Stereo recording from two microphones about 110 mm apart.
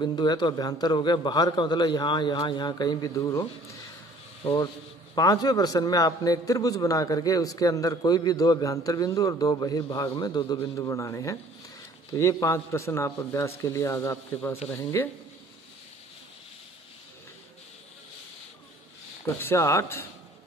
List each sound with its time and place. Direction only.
0.0 s a man's voice: 40° left (ahead or behind)
5.1 s a man's voice: 35° left (ahead or behind)
19.2 s a man's voice: 20° left (ahead or behind)